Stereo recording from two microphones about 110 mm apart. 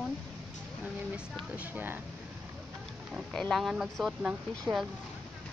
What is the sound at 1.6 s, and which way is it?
Speech, 20° right (ahead or behind).